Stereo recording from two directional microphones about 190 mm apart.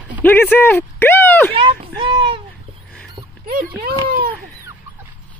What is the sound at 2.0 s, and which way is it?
Speech, 30° right (ahead or behind).